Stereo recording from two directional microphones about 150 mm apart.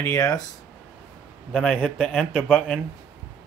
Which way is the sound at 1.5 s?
5° left (ahead or behind).